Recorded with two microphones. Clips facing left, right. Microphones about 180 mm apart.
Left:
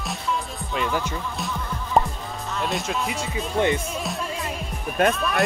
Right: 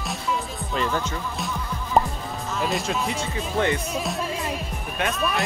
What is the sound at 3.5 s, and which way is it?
Speech, 20° left (ahead or behind).